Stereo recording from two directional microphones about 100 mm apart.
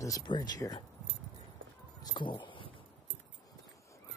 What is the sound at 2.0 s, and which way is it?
Dog, 55° left (ahead or behind).